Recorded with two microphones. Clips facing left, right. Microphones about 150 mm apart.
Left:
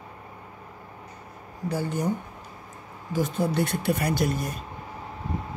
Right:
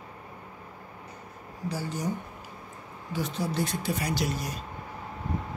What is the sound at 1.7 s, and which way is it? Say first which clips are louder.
Speech: left 5 dB; 55° left (ahead or behind).